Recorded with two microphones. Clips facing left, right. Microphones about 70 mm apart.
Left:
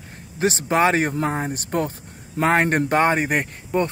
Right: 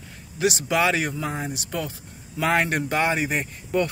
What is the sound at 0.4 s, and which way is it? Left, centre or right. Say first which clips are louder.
Speech: left 3 dB; left.